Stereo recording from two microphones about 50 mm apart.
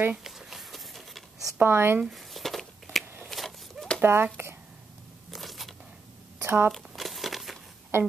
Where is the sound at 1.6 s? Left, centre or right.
Right.